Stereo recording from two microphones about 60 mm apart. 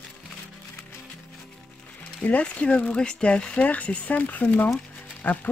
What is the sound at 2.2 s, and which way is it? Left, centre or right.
Speech, left.